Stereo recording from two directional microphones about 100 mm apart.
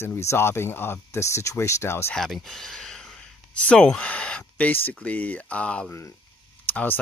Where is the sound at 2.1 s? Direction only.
5° left (ahead or behind).